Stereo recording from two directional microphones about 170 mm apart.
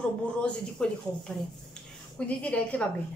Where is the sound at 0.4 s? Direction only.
5° left (ahead or behind).